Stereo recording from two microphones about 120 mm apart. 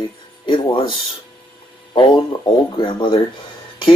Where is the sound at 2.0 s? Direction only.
45° left (ahead or behind).